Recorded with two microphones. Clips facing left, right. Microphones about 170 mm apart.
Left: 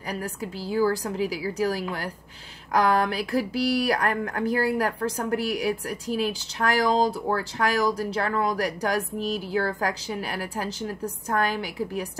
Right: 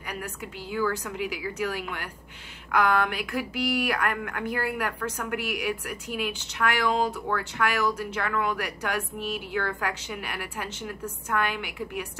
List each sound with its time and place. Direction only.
0.1 s speech: 35° left (ahead or behind)